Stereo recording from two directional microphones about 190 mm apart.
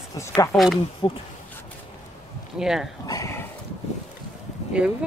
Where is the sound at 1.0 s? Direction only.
30° left (ahead or behind).